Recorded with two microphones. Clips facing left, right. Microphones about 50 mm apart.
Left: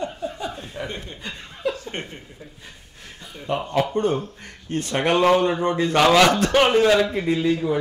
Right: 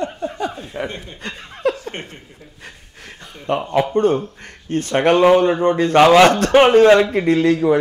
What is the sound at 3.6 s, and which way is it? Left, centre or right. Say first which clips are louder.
Speech: right 4 dB; centre.